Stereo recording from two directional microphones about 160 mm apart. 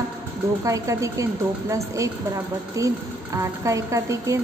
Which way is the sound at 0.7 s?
20° right (ahead or behind).